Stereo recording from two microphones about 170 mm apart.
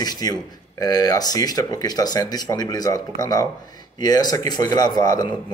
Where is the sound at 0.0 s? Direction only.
25° left (ahead or behind).